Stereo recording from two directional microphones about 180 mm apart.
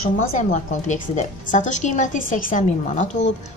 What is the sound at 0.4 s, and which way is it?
A woman's voice, 45° left (ahead or behind).